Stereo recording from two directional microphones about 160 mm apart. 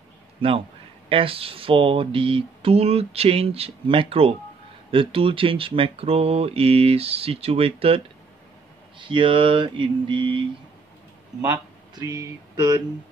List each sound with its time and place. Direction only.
1.0 s speech: 35° right (ahead or behind)
11.4 s speech: 20° right (ahead or behind)